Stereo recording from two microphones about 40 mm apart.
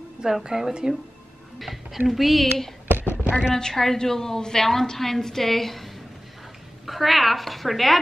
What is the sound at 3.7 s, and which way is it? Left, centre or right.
A woman's voice, centre.